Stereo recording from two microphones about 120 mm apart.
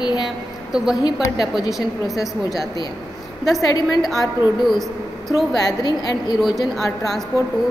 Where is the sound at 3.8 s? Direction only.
Centre (ahead or behind).